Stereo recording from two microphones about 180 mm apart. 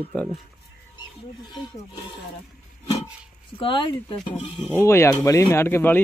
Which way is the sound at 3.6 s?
30° left (ahead or behind).